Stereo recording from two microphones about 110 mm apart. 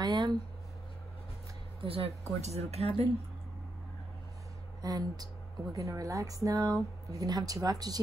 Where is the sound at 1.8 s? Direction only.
60° right (ahead or behind); by 2.9 s 75° right (ahead or behind).